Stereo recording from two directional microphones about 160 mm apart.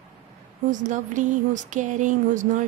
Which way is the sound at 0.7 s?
50° right (ahead or behind).